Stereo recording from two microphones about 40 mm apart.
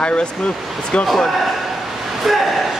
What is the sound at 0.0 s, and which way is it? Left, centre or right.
Speech, left.